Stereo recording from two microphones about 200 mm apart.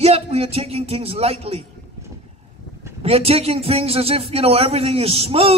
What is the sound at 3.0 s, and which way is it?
A man's voice, 30° right (ahead or behind).